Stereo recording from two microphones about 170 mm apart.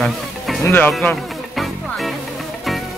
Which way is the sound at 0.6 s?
10° left (ahead or behind).